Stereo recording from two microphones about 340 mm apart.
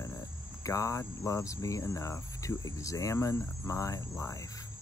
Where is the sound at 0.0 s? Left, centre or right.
Centre.